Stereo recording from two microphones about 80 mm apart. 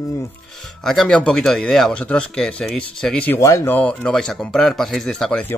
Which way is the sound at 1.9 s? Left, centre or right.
Centre.